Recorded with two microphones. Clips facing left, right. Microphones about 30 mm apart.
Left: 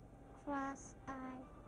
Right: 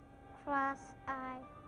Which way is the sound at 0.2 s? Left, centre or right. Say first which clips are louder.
Right 7 dB; right.